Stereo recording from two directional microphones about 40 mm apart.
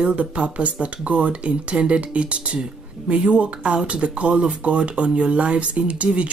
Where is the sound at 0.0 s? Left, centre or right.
Right.